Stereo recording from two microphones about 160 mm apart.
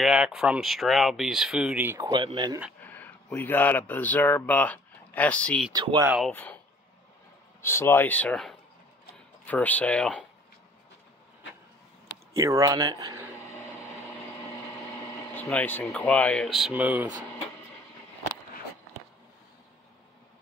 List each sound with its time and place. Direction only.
0.0 s speech: 5° right (ahead or behind)
2.0 s a man's voice: 30° right (ahead or behind)
2.8 s speech: 10° left (ahead or behind)
5.7 s a man's voice: 25° right (ahead or behind)
6.0 s speech: 5° right (ahead or behind)
6.3 s speech: 10° left (ahead or behind)
7.6 s speech: 15° left (ahead or behind)
12.4 s a man's voice: 20° right (ahead or behind)
15.3 s speech: 10° left (ahead or behind); by 17.1 s 10° right (ahead or behind)